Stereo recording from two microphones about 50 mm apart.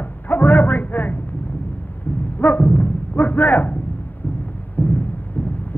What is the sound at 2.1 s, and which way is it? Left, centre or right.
Dog, left.